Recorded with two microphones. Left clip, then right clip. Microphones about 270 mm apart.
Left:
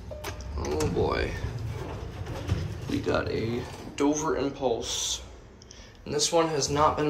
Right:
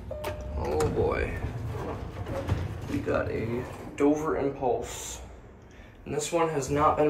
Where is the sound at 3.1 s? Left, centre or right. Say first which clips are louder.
Left 1 dB; centre.